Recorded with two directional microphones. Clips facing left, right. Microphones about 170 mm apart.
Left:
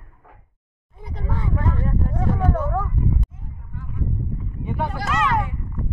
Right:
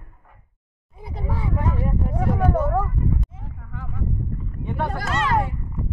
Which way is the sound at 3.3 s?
90° right.